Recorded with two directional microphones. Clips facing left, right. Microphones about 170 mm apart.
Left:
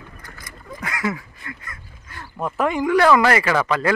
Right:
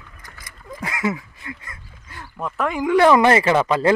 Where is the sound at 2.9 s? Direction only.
20° right (ahead or behind).